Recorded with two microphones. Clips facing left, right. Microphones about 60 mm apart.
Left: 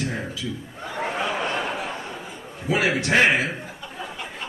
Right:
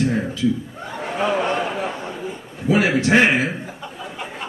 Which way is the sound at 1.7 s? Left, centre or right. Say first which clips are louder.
Right 4 dB; right.